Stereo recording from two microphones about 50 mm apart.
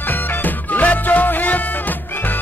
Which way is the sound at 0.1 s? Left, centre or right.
Left.